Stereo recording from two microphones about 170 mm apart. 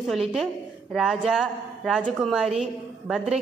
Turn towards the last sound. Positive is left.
turn(degrees=-5)  # may be behind; listen again after turning